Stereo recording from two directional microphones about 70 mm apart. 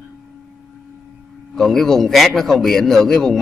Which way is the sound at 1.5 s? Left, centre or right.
Centre.